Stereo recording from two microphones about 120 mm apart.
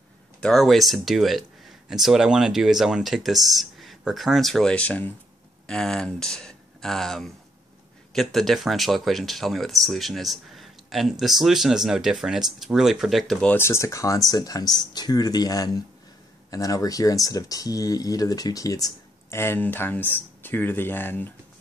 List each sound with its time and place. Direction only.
0.4 s speech: centre (ahead or behind)
13.6 s speech: 25° left (ahead or behind)
19.3 s speech: 20° left (ahead or behind)